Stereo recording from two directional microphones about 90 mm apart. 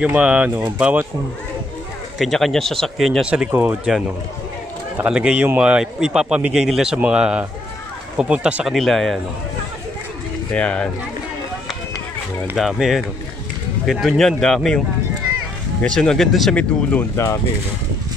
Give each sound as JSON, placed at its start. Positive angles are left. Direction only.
{"t": 0.0, "sound": "a man's voice", "side_deg": -15}
{"t": 2.1, "sound": "speech", "side_deg": 0}
{"t": 3.3, "sound": "a man's voice", "side_deg": -15}
{"t": 4.9, "sound": "a man's voice", "side_deg": -10}
{"t": 8.6, "sound": "speech", "side_deg": 0}
{"t": 10.5, "sound": "speech", "side_deg": 10}
{"t": 12.5, "sound": "speech", "side_deg": -5}
{"t": 15.8, "sound": "speech", "side_deg": 10}
{"t": 17.2, "sound": "speech", "side_deg": 35}